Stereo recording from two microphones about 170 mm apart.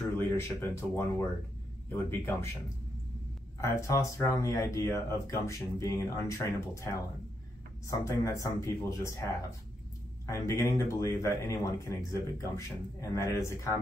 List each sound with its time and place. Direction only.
0.2 s speech: 15° left (ahead or behind)
3.6 s speech: 15° left (ahead or behind)
10.2 s speech: 15° left (ahead or behind)